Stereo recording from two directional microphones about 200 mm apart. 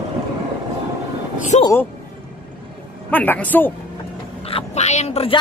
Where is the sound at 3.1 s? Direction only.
10° left (ahead or behind).